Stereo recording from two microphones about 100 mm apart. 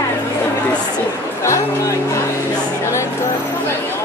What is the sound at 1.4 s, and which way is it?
Music, 30° left (ahead or behind).